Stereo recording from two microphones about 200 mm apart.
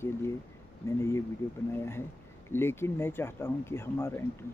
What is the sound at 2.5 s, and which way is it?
Speech, 10° left (ahead or behind).